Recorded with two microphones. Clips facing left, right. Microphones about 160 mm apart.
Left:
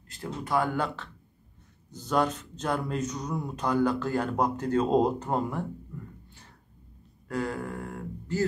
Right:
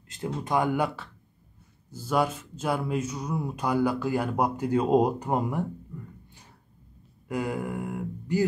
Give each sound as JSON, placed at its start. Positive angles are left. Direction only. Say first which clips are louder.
{"t": 0.1, "sound": "speech", "louder": "right 2 dB", "side_deg": -20}
{"t": 7.2, "sound": "speech", "louder": "right 2 dB", "side_deg": -15}